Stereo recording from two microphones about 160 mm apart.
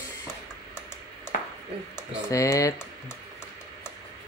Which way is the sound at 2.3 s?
20° left (ahead or behind).